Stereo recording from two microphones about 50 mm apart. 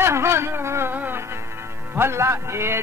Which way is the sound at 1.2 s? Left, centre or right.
Right.